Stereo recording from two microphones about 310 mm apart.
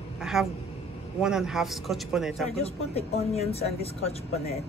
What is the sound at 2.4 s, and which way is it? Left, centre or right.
Speech, centre.